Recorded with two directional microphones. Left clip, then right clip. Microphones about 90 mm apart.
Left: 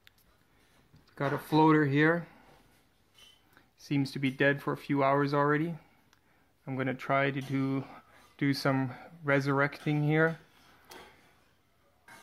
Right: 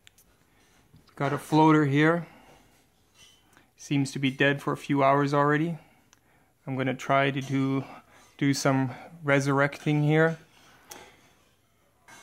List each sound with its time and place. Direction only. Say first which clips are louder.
1.0 s speech: right 3 dB; 20° right (ahead or behind)
3.5 s speech: right 4 dB; 15° right (ahead or behind)